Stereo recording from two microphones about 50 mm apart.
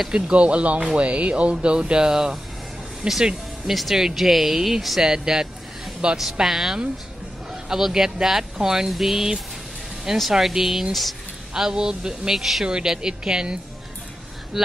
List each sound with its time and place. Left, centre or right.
0.1 s speech: right
3.6 s speech: centre
11.5 s speech: centre
12.6 s speech: centre